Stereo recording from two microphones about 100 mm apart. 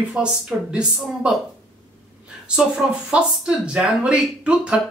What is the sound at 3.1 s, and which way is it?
Speech, 10° right (ahead or behind).